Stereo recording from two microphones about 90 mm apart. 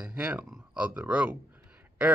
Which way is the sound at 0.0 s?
15° right (ahead or behind).